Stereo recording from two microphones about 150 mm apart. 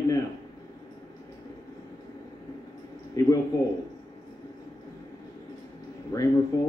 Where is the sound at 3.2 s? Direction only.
20° left (ahead or behind).